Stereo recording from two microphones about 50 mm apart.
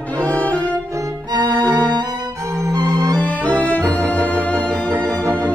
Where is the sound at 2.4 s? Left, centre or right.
Right.